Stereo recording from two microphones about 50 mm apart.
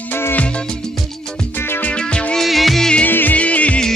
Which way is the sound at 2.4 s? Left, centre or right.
Centre.